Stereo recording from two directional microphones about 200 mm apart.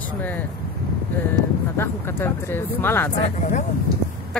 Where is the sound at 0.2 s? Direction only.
10° left (ahead or behind).